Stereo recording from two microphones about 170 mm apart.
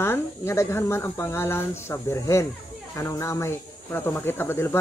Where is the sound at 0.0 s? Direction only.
15° left (ahead or behind).